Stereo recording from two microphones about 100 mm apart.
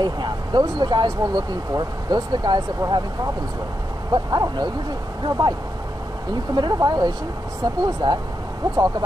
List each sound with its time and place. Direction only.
0.0 s speech: 45° right (ahead or behind)
4.1 s speech: 45° right (ahead or behind)